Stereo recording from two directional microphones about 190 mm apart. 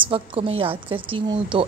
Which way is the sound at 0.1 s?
30° right (ahead or behind).